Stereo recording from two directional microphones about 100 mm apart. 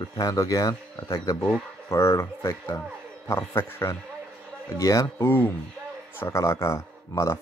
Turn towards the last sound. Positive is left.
turn(degrees=35)  # may be behind; listen again after turning